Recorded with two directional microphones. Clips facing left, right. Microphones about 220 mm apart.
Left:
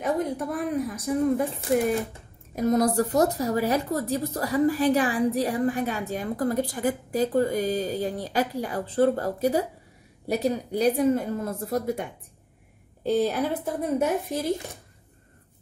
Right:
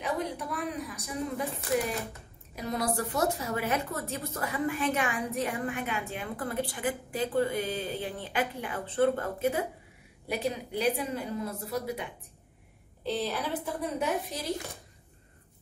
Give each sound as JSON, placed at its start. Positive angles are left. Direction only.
{"t": 0.0, "sound": "a woman's voice", "side_deg": 45}
{"t": 2.5, "sound": "a woman's voice", "side_deg": 45}